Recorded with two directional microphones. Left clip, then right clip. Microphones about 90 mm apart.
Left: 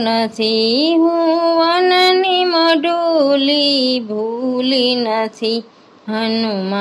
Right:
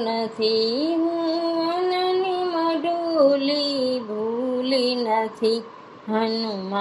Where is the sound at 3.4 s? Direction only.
70° left (ahead or behind).